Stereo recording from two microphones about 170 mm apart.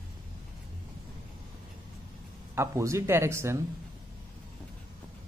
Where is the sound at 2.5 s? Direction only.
15° right (ahead or behind).